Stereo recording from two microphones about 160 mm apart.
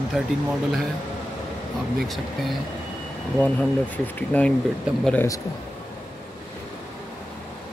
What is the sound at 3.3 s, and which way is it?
Speech, 10° left (ahead or behind).